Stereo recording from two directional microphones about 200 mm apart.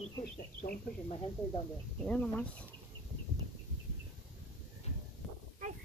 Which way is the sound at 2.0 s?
5° left (ahead or behind).